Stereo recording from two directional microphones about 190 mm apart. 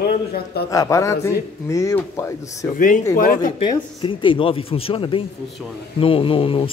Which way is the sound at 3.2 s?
50° left (ahead or behind).